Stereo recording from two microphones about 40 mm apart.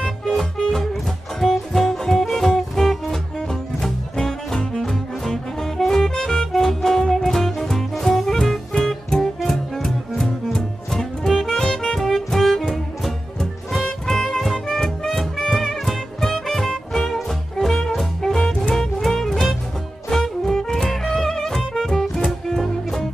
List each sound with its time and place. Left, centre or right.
0.0 s music: centre
18.4 s music: left
18.9 s music: centre